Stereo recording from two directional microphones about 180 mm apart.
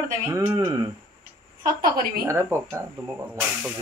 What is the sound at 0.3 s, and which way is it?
Speech, 15° right (ahead or behind).